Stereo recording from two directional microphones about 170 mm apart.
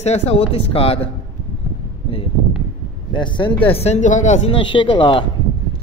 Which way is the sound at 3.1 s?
30° left (ahead or behind).